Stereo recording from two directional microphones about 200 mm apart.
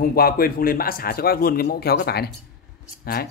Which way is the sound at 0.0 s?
50° left (ahead or behind).